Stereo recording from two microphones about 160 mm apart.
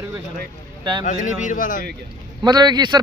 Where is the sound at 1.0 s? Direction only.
50° left (ahead or behind).